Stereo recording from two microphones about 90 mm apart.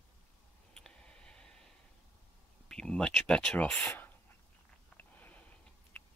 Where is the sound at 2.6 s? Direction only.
10° left (ahead or behind).